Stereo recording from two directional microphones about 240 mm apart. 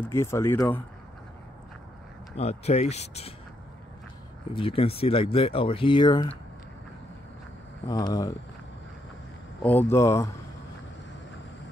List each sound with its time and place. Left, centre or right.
0.0 s speech: centre
2.3 s speech: left
4.6 s speech: left
7.9 s speech: centre
9.6 s speech: centre